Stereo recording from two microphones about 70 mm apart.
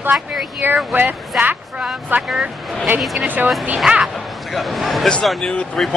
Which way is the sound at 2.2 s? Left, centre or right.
Centre.